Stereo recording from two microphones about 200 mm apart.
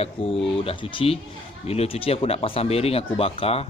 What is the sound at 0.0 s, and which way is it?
Speech, 30° left (ahead or behind).